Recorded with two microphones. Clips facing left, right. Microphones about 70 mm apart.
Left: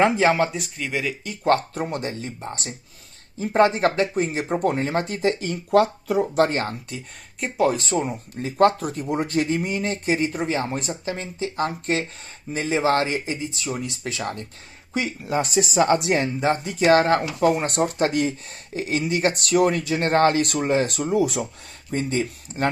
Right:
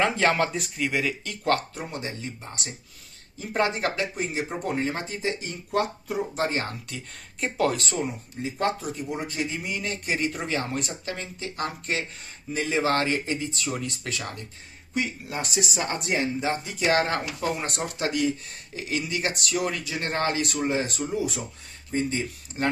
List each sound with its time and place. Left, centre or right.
0.1 s speech: centre
1.7 s speech: left
7.5 s speech: centre
7.8 s speech: left
8.4 s speech: left
16.1 s speech: left
21.9 s speech: left